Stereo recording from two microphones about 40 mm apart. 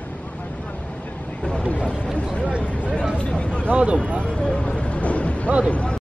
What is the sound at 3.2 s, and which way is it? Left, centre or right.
Speech, left.